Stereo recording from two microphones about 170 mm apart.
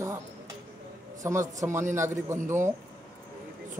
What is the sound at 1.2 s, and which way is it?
A man's voice, 15° right (ahead or behind).